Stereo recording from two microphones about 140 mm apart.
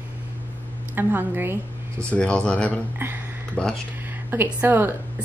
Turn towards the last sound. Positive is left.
turn(degrees=-15)  # may be behind; listen again after turning